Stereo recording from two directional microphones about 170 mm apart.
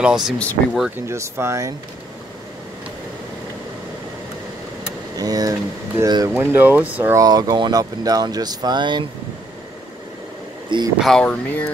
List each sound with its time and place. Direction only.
0.0 s speech: 5° right (ahead or behind)
0.4 s speech: 5° left (ahead or behind)
1.0 s speech: 15° right (ahead or behind)
5.1 s speech: 20° right (ahead or behind)
7.2 s speech: 25° right (ahead or behind)
11.0 s speech: 5° left (ahead or behind)